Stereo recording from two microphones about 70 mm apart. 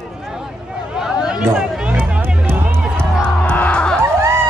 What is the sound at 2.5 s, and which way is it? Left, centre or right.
Music, right.